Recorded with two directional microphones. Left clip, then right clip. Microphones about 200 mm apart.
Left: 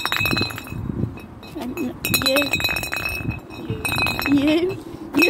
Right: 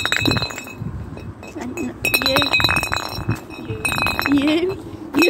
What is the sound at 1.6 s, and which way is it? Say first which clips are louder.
Speech: right 4 dB; 15° left (ahead or behind).